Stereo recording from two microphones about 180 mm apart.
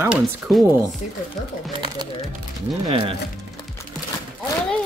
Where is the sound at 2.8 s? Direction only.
30° right (ahead or behind).